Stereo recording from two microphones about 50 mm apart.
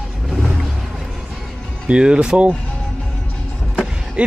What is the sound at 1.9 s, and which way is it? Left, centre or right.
Speech, right.